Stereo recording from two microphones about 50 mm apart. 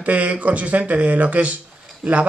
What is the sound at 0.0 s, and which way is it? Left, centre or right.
Speech, right.